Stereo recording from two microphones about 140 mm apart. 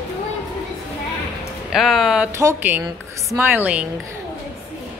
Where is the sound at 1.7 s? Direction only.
Centre (ahead or behind).